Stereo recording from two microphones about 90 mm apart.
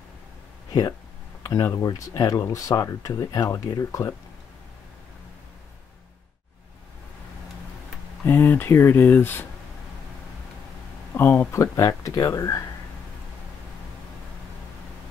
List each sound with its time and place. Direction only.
1.4 s speech: 35° left (ahead or behind)
8.3 s speech: 25° left (ahead or behind)
11.1 s speech: 25° left (ahead or behind)